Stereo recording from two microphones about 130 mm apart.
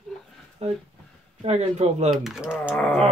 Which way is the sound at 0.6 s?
55° right (ahead or behind).